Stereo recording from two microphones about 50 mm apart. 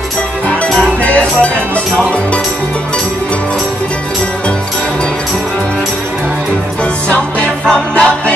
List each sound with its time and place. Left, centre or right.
1.0 s music: left
6.8 s music: left